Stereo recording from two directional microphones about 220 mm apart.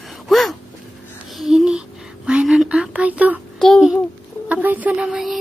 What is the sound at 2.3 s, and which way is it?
A woman's voice, 5° right (ahead or behind).